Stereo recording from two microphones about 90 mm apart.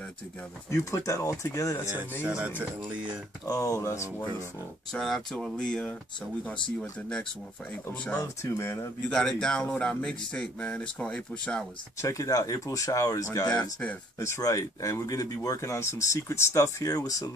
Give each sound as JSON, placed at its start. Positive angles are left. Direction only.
{"t": 0.7, "sound": "speech", "side_deg": 35}
{"t": 2.2, "sound": "speech", "side_deg": -10}
{"t": 3.4, "sound": "speech", "side_deg": 40}
{"t": 4.9, "sound": "speech", "side_deg": 5}
{"t": 8.2, "sound": "speech", "side_deg": 35}
{"t": 9.1, "sound": "speech", "side_deg": 10}
{"t": 12.0, "sound": "speech", "side_deg": 35}
{"t": 13.5, "sound": "speech", "side_deg": 15}
{"t": 14.2, "sound": "speech", "side_deg": 35}